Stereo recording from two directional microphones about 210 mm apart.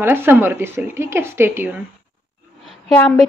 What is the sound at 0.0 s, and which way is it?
A woman's voice, 10° right (ahead or behind).